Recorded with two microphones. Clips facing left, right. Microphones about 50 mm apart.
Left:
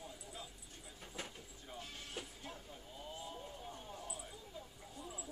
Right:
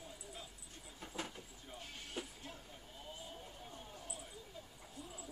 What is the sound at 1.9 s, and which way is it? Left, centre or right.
Music, centre.